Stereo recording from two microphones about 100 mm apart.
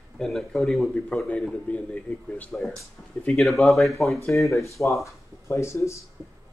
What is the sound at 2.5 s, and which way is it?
Speech, 5° left (ahead or behind).